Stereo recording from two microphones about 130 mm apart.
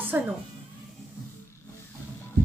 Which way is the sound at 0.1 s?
15° right (ahead or behind).